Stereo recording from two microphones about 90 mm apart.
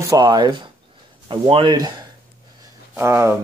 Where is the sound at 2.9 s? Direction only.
30° right (ahead or behind).